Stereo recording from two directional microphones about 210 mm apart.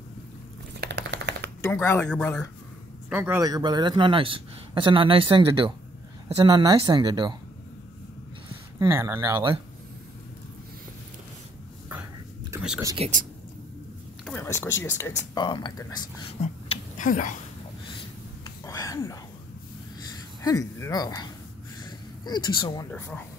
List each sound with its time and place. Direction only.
0.7 s a sound: 55° right (ahead or behind)
1.6 s speech: 10° left (ahead or behind)
3.1 s a man's voice: 10° right (ahead or behind)
8.7 s speech: 15° right (ahead or behind)
12.4 s whispering: 5° right (ahead or behind)
12.8 s a man's voice: 25° right (ahead or behind)
14.2 s speech: 10° left (ahead or behind)
16.3 s a sound: 30° left (ahead or behind)
18.7 s a sound: 15° left (ahead or behind)
20.4 s speech: 15° left (ahead or behind)
21.8 s a sound: 20° left (ahead or behind)
22.8 s speech: 5° left (ahead or behind)